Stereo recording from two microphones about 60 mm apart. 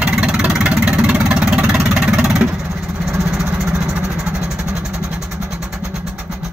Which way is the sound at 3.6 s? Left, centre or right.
Right.